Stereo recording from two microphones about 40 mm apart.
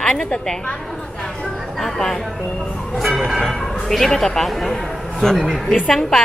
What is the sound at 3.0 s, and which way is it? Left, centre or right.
Music, centre.